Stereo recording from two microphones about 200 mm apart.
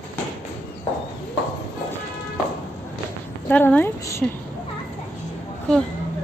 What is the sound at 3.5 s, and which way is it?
Speech, 10° left (ahead or behind).